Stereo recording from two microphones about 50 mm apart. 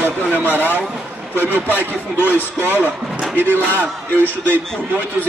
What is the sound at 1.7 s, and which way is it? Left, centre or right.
Speech, left.